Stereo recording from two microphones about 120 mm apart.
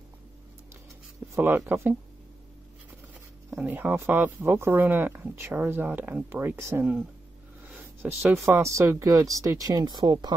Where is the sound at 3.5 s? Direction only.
15° right (ahead or behind).